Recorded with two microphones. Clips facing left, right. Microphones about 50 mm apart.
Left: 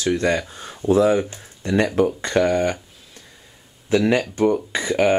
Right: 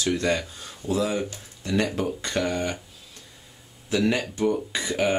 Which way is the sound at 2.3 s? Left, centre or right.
Centre.